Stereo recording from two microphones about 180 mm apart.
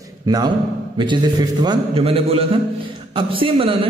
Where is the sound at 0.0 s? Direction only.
20° right (ahead or behind).